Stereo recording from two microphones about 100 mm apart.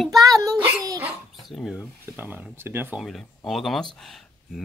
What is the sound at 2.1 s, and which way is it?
Speech, 20° right (ahead or behind).